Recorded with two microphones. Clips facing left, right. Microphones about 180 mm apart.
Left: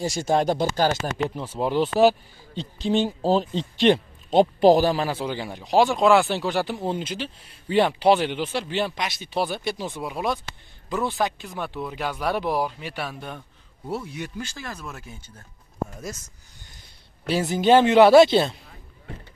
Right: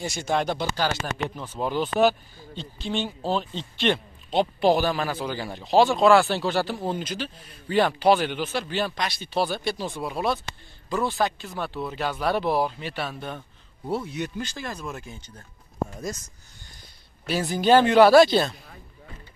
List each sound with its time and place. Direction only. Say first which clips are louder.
0.0 s speech: left 4 dB; 40° left (ahead or behind)
1.1 s speech: left 4 dB; 30° left (ahead or behind)
5.2 s speech: left 1 dB; 20° left (ahead or behind)
14.7 s speech: right 2 dB; 10° right (ahead or behind)
15.0 s speech: right 1 dB; 5° left (ahead or behind)
17.3 s speech: left 1 dB; 20° left (ahead or behind)